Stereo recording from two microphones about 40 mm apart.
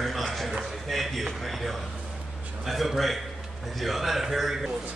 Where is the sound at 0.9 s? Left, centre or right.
Centre.